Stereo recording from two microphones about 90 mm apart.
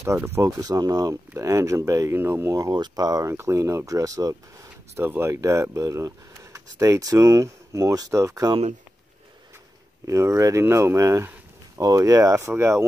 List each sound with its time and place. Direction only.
0.0 s speech: 30° right (ahead or behind)
2.7 s speech: 50° right (ahead or behind)
3.3 s speech: 30° right (ahead or behind)
4.9 s speech: 25° right (ahead or behind)
10.0 s speech: 35° right (ahead or behind)